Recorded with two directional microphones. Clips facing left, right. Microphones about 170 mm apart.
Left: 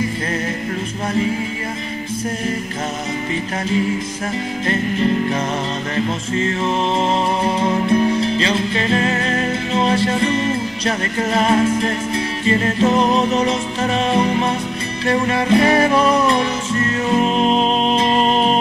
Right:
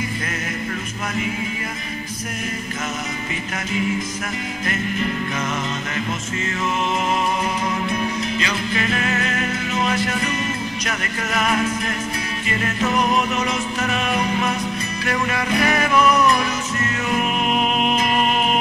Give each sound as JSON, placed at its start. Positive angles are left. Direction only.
{"t": 4.6, "sound": "music", "side_deg": 30}